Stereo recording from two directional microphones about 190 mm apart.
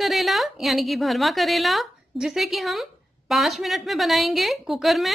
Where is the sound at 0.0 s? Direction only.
Centre (ahead or behind).